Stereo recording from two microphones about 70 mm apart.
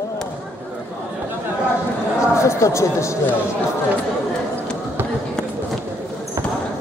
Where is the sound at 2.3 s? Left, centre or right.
Left.